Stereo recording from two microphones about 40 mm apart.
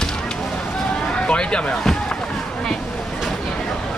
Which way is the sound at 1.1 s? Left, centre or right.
Left.